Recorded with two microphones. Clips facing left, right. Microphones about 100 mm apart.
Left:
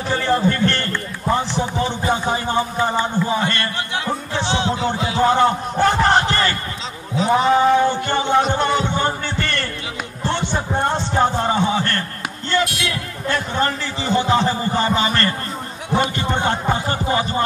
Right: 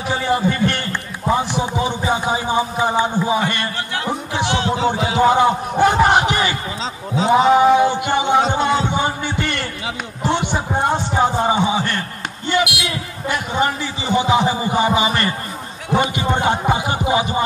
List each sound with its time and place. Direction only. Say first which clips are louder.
0.1 s speech: even; 10° right (ahead or behind)
4.0 s music: right 3 dB; 15° right (ahead or behind)
4.8 s speech: right 3 dB; 15° right (ahead or behind)
7.2 s a sound: right 3 dB; 15° right (ahead or behind)
15.9 s speech: right 2 dB; 15° right (ahead or behind)